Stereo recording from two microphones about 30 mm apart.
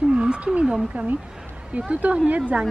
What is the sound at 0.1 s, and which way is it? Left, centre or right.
Wild animals, right.